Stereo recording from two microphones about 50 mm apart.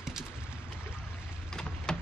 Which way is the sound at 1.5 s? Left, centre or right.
Centre.